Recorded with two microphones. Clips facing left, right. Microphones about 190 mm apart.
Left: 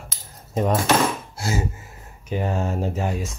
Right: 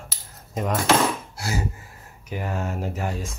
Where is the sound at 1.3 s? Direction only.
25° left (ahead or behind).